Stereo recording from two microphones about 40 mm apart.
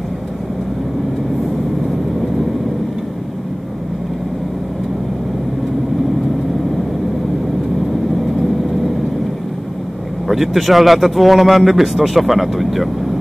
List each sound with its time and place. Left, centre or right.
10.2 s a man's voice: centre